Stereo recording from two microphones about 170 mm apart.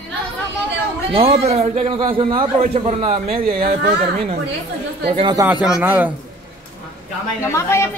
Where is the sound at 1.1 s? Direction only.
35° right (ahead or behind).